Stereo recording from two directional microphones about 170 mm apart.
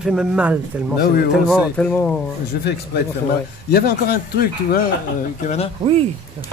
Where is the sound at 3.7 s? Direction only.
65° left (ahead or behind).